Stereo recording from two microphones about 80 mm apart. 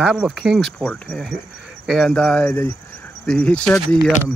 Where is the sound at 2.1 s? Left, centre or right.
Centre.